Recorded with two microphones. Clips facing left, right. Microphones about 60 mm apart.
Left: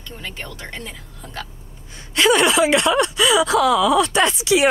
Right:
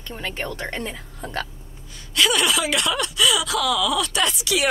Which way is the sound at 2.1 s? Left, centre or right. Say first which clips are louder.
Left 5 dB; left.